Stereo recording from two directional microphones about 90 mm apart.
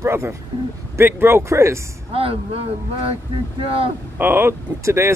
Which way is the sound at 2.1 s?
90° right.